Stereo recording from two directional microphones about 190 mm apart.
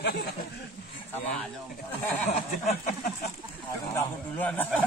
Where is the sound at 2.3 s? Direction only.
35° left (ahead or behind).